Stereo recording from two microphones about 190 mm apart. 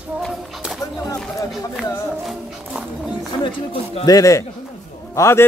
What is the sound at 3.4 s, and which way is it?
Speech, 30° left (ahead or behind).